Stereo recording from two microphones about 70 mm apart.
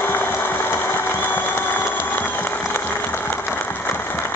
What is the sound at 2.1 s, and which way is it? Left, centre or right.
Applause, left.